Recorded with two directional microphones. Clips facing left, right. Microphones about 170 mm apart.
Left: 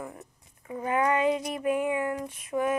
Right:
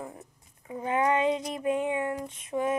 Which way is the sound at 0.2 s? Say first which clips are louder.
Left 1 dB; 20° right (ahead or behind).